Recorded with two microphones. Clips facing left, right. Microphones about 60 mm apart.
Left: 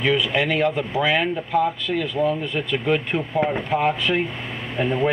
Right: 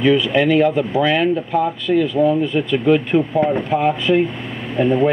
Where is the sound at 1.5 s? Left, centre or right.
Centre.